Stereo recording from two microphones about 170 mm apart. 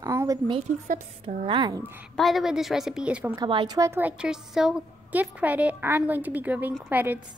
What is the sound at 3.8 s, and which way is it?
A woman's voice, 15° right (ahead or behind).